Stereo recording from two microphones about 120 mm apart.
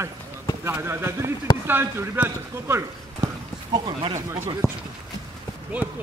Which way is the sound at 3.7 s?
40° right (ahead or behind).